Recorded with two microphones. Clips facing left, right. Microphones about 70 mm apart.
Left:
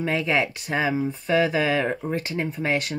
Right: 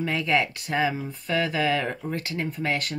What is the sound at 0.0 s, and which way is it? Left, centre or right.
Speech, centre.